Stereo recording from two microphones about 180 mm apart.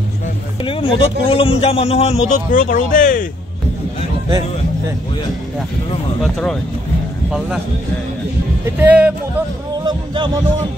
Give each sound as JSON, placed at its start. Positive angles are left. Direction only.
{"t": 0.7, "sound": "a man's voice", "side_deg": 30}
{"t": 6.2, "sound": "speech", "side_deg": 5}
{"t": 8.6, "sound": "speech", "side_deg": -10}
{"t": 9.8, "sound": "music", "side_deg": -25}